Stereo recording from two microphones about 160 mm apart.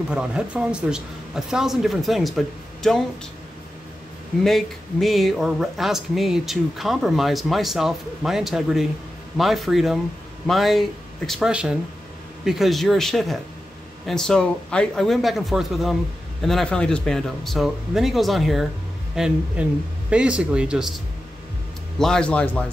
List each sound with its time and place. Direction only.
0.1 s speech: 5° right (ahead or behind)
4.4 s a man's voice: centre (ahead or behind)